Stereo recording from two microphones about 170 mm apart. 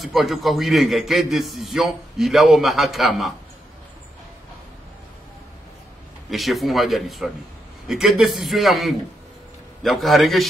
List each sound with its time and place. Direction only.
0.0 s a man's voice: centre (ahead or behind)
6.3 s a man's voice: centre (ahead or behind)